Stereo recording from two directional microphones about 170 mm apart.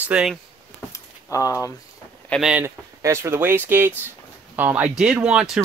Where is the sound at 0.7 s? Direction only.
20° left (ahead or behind).